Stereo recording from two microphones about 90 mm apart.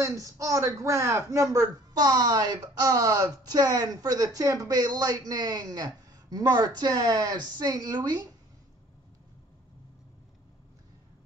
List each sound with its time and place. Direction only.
0.0 s a man's voice: 40° right (ahead or behind)